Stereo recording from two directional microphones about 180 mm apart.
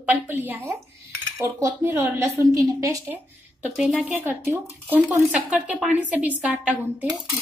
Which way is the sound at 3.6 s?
5° right (ahead or behind).